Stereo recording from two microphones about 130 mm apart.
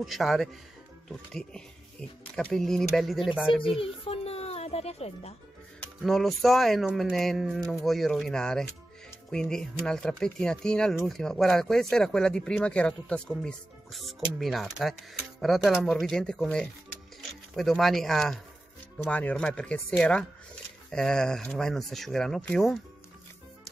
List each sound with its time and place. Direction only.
0.0 s speech: centre (ahead or behind)
3.8 s music: 50° left (ahead or behind)
6.0 s speech: centre (ahead or behind)